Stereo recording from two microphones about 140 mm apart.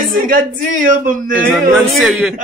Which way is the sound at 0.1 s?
80° right.